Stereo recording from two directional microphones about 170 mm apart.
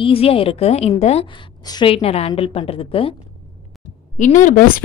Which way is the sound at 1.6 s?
25° left (ahead or behind).